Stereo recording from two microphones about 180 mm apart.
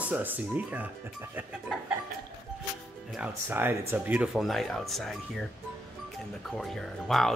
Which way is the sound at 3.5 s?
10° right (ahead or behind).